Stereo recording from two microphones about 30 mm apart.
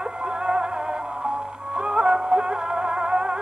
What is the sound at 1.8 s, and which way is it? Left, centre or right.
Music, right.